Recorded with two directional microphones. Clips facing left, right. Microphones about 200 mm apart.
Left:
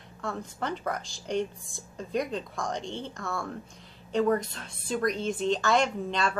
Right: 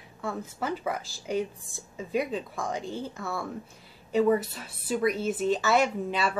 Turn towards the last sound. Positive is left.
turn(degrees=-5)  # may be behind; listen again after turning